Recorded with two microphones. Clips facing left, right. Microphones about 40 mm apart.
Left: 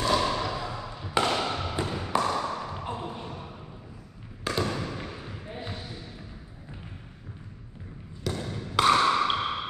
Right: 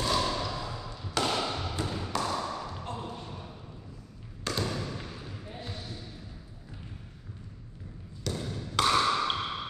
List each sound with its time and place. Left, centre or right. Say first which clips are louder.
0.1 s thump: left 4 dB; centre
4.5 s basketball bounce: left 3 dB; centre
8.3 s a sound: left 3 dB; left